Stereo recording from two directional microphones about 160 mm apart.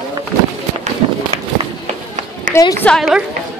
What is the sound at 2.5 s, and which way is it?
Speech, 20° left (ahead or behind).